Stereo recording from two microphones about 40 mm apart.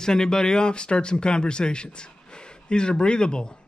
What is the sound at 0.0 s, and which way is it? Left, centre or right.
A man's voice, centre.